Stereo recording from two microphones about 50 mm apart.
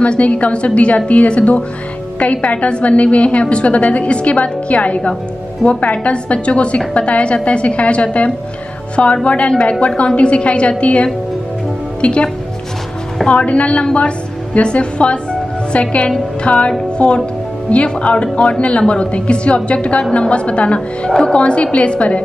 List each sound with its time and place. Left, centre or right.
0.0 s a woman's voice: left
13.3 s a woman's voice: left
21.1 s a woman's voice: centre
21.4 s a woman's voice: left